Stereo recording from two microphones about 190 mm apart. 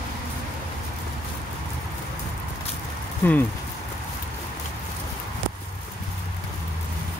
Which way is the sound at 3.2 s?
15° left (ahead or behind).